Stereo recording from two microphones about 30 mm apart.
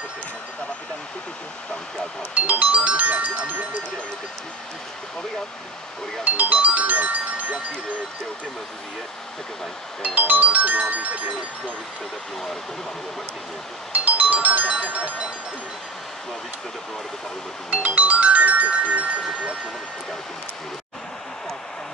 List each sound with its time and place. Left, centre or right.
2.3 s music: right
6.2 s music: right
10.0 s speech: right
13.9 s music: right
15.0 s music: right
17.6 s music: right